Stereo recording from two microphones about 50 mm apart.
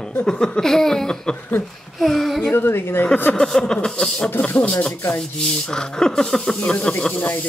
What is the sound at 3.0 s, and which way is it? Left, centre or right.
Speech, left.